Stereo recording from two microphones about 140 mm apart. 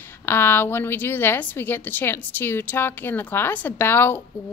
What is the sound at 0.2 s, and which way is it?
A woman's voice, 15° left (ahead or behind).